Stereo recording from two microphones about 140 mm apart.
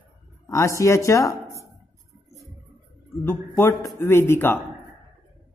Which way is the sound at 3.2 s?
15° left (ahead or behind).